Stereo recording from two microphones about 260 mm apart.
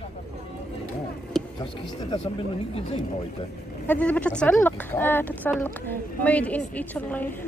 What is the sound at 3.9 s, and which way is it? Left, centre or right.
Speech, centre.